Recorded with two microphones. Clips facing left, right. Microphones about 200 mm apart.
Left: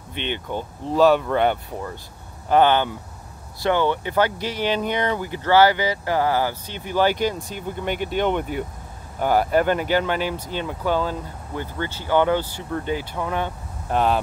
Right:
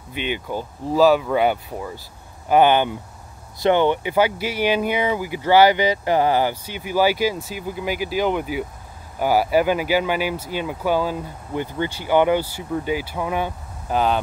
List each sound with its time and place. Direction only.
0.1 s speech: 10° right (ahead or behind)